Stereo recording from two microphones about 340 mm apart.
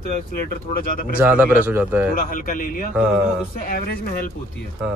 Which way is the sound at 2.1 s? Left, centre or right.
Left.